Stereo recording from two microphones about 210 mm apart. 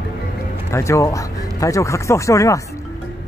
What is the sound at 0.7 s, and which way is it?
Speech, 15° left (ahead or behind).